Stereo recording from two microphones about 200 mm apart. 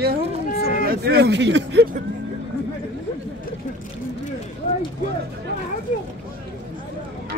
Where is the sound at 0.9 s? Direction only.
55° right (ahead or behind).